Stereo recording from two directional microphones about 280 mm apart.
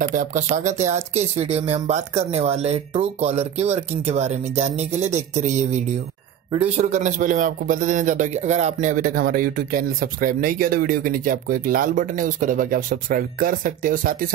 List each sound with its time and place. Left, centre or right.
0.1 s a man's voice: right